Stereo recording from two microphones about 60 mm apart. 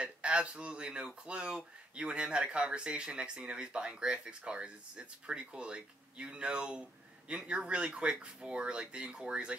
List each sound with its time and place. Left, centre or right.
0.0 s speech: centre